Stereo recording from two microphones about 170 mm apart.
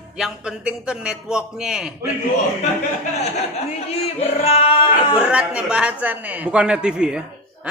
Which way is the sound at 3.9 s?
35° left (ahead or behind).